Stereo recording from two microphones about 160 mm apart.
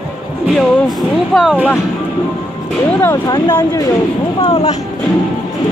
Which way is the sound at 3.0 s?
15° left (ahead or behind).